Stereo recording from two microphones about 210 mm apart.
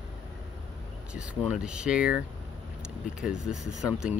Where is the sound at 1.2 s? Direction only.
5° right (ahead or behind).